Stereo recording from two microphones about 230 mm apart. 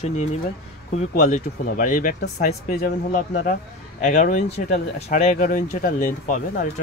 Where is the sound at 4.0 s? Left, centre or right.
Left.